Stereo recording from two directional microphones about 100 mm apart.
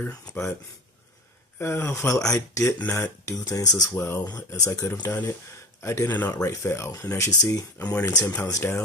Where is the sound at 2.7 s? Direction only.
20° left (ahead or behind); by 3.7 s 35° left (ahead or behind).